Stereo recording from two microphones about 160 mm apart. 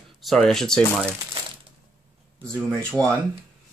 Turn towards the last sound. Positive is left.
turn(degrees=5)  # may be behind; listen again after turning